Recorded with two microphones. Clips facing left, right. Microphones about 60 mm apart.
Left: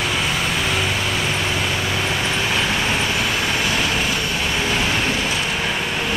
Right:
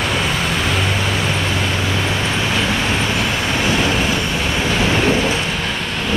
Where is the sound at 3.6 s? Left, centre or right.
Centre.